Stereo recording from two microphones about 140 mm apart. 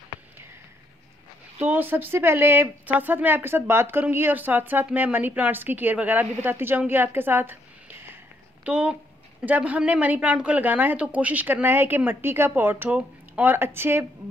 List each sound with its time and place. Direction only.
1.6 s speech: 15° right (ahead or behind)